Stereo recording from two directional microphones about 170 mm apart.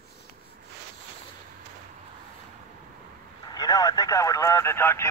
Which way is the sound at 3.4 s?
20° left (ahead or behind).